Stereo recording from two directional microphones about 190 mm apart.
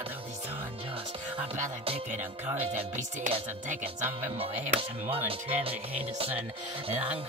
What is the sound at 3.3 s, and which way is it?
Speech, 30° right (ahead or behind).